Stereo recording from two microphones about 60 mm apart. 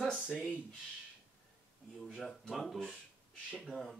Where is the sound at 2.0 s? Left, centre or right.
Centre.